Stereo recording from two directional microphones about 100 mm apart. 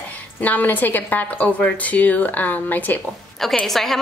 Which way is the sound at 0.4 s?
15° left (ahead or behind).